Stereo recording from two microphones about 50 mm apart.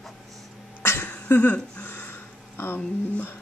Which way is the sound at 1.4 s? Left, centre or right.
Left.